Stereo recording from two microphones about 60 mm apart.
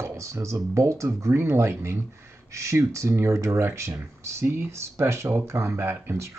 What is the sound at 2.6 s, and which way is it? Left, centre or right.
Speech, right.